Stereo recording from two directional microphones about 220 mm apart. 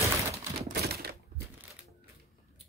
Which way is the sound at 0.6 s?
45° right (ahead or behind).